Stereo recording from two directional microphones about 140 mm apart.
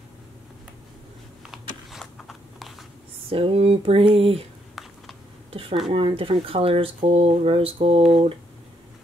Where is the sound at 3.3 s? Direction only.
45° right (ahead or behind).